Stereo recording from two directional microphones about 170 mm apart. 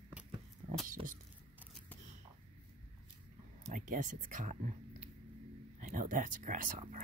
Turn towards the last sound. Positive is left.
turn(degrees=-45)  # may be behind; listen again after turning